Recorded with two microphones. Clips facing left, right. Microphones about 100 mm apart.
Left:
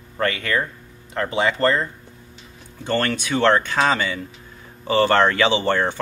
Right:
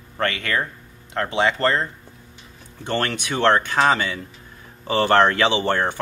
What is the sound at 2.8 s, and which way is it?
Speech, 15° right (ahead or behind).